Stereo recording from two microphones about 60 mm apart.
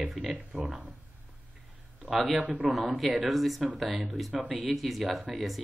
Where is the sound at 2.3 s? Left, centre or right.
Right.